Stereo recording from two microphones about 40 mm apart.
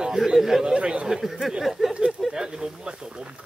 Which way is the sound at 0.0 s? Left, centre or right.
Centre.